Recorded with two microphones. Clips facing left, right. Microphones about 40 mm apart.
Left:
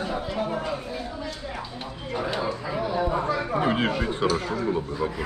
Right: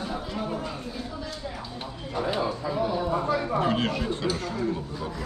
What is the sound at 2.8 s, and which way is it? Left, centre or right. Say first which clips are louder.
Speech: left 1 dB; centre.